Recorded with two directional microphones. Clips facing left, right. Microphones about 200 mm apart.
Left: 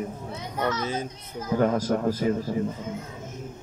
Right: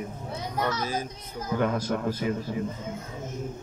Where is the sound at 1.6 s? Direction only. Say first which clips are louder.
Left 4 dB; 40° left (ahead or behind).